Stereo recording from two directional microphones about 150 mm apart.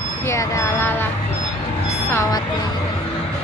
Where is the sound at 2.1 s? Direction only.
20° left (ahead or behind).